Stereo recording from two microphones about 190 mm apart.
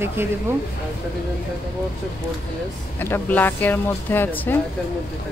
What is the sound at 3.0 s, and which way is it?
Speech, 10° left (ahead or behind).